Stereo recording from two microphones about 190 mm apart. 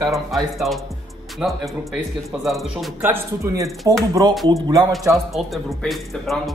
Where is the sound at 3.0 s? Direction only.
15° right (ahead or behind).